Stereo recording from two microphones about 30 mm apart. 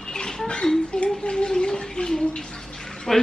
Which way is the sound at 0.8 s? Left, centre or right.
Left.